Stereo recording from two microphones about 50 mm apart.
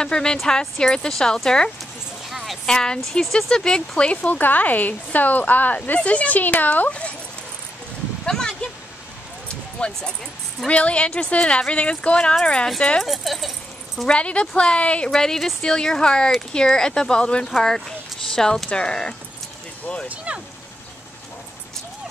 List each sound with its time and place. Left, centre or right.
0.0 s speech: centre
2.2 s clip-clop: centre
2.6 s a woman's voice: centre
8.3 s speech: centre
9.8 s speech: left
13.0 s speech: centre
14.0 s speech: left
15.0 s speech: centre
20.1 s speech: right